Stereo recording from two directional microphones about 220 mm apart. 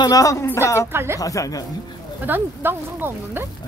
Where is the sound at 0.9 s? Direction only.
10° right (ahead or behind).